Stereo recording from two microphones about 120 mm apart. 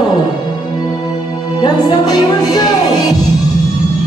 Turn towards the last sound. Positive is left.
turn(degrees=35)  # may be behind; listen again after turning